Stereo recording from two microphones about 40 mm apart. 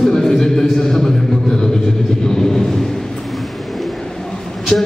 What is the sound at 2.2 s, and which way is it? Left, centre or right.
Vehicle, centre.